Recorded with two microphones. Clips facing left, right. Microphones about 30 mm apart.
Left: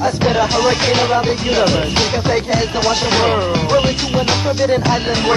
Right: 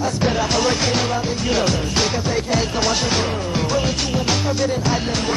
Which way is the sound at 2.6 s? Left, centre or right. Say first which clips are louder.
Left 4 dB; centre.